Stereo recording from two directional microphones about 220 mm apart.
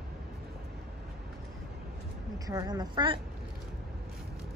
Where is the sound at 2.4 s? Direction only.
15° right (ahead or behind).